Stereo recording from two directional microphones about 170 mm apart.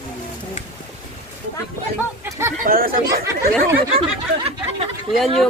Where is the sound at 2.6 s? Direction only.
60° right (ahead or behind).